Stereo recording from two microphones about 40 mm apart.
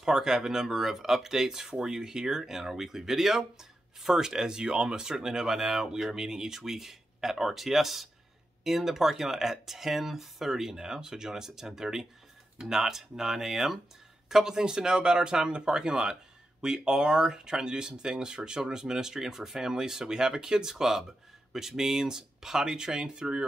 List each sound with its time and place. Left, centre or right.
0.0 s speech: centre